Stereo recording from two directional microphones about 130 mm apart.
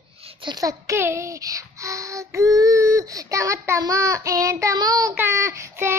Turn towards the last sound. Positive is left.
turn(degrees=-20)  # may be behind; listen again after turning